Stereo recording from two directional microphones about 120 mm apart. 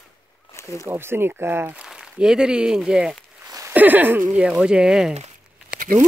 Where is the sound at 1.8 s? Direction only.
5° right (ahead or behind).